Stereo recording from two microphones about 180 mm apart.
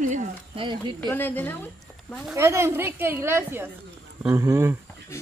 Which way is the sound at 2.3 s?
15° right (ahead or behind).